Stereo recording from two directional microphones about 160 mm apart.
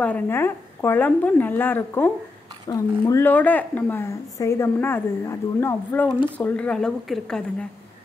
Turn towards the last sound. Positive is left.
turn(degrees=5)  # may be behind; listen again after turning